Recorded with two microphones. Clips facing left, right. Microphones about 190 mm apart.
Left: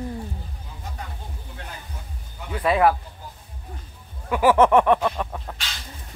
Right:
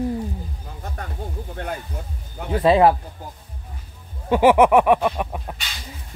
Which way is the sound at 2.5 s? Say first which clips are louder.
Right 4 dB; 30° right (ahead or behind).